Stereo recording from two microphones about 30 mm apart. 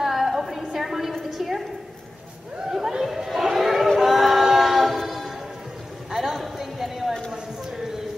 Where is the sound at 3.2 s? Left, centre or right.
Centre.